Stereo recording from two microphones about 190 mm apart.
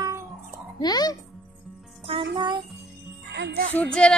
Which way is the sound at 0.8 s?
20° left (ahead or behind).